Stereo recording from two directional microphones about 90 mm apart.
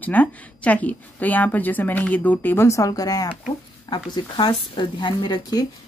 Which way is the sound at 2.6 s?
35° left (ahead or behind).